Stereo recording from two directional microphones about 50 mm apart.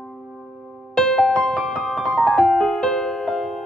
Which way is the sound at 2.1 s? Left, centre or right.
Centre.